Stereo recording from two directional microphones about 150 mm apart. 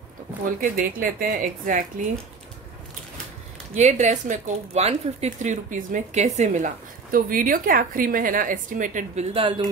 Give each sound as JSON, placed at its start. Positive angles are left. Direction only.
{"t": 0.6, "sound": "speech", "side_deg": -65}
{"t": 3.7, "sound": "speech", "side_deg": -50}
{"t": 9.3, "sound": "speech", "side_deg": -35}